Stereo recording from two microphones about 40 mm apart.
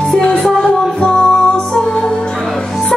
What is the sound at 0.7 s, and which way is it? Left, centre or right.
Music, left.